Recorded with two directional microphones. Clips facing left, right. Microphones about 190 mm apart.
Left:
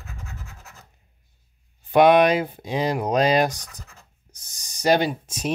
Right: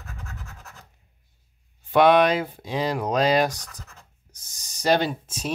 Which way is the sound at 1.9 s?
15° left (ahead or behind).